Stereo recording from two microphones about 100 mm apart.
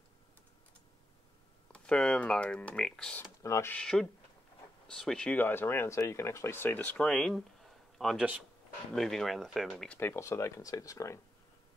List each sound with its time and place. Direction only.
1.7 s speech: 10° left (ahead or behind)
3.4 s speech: 30° left (ahead or behind)
3.7 s speech: 5° left (ahead or behind)
7.0 s speech: 5° left (ahead or behind)
9.9 s speech: 25° left (ahead or behind)